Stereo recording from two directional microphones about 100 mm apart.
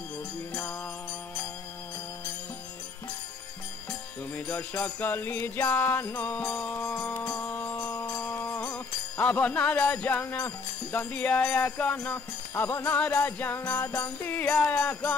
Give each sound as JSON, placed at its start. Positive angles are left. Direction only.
{"t": 0.5, "sound": "music", "side_deg": 20}
{"t": 4.3, "sound": "music", "side_deg": 20}
{"t": 8.1, "sound": "music", "side_deg": 20}
{"t": 9.2, "sound": "jingle bell", "side_deg": 15}
{"t": 12.9, "sound": "music", "side_deg": 20}